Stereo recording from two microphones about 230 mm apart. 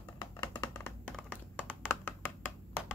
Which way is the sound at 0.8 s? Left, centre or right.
Centre.